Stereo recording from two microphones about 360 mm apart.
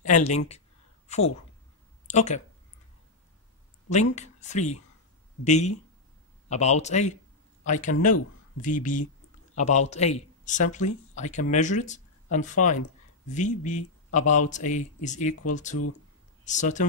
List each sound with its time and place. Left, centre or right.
0.0 s speech: centre
1.0 s a sound: centre
2.0 s speech: centre
3.9 s speech: centre